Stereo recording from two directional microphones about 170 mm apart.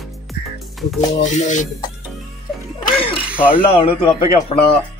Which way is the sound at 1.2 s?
45° left (ahead or behind).